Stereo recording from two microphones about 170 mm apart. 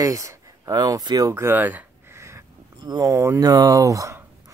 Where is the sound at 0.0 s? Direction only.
20° right (ahead or behind).